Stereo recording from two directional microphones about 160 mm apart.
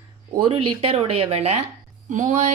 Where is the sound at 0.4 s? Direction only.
35° right (ahead or behind).